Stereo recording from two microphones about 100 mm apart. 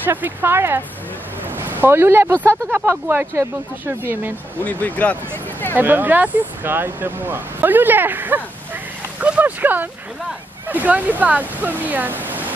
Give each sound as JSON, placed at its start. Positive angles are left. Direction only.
{"t": 0.0, "sound": "speech", "side_deg": -20}
{"t": 4.6, "sound": "speech", "side_deg": 15}
{"t": 5.8, "sound": "speech", "side_deg": -20}
{"t": 9.2, "sound": "a sound", "side_deg": -15}
{"t": 10.7, "sound": "speech", "side_deg": -15}